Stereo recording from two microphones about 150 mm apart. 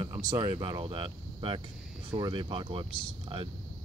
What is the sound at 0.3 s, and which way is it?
Speech, 35° right (ahead or behind).